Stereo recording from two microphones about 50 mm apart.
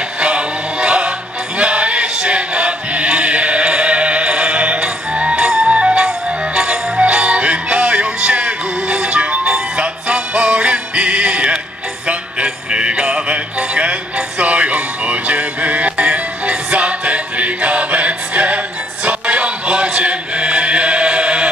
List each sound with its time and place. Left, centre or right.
0.2 s music: right